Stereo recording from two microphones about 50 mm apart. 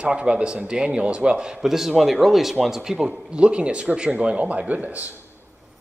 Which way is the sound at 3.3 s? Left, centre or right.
Centre.